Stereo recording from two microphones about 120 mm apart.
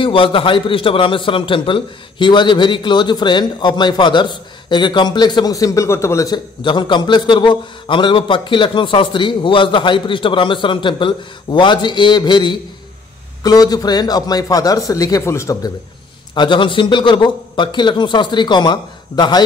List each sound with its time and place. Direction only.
0.0 s a man's voice: 45° left (ahead or behind); by 15.7 s 25° left (ahead or behind)
16.3 s a man's voice: 40° left (ahead or behind)